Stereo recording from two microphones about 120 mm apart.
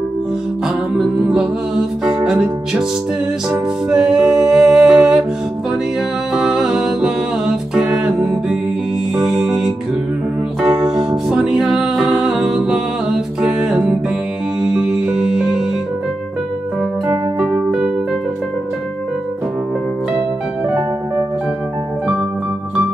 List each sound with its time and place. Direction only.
0.7 s music: centre (ahead or behind)
3.9 s music: 5° right (ahead or behind)
6.3 s music: 5° right (ahead or behind)
11.1 s music: 5° right (ahead or behind)
17.1 s music: 15° right (ahead or behind)
20.6 s music: 15° right (ahead or behind)